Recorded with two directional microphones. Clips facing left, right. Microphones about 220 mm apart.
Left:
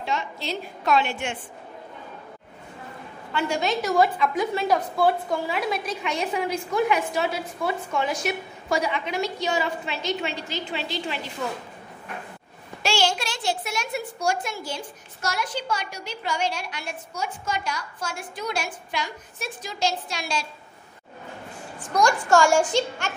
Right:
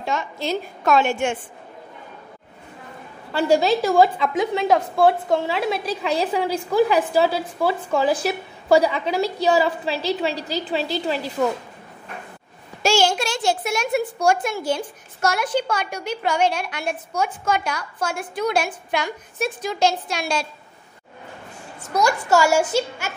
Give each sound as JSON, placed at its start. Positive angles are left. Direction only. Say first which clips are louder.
{"t": 0.0, "sound": "a child's voice", "louder": "right 4 dB", "side_deg": -45}
{"t": 3.3, "sound": "a woman's voice", "louder": "right 7 dB", "side_deg": -35}
{"t": 12.8, "sound": "a child's voice", "louder": "right 5 dB", "side_deg": -45}
{"t": 21.9, "sound": "a woman's voice", "louder": "right 1 dB", "side_deg": -5}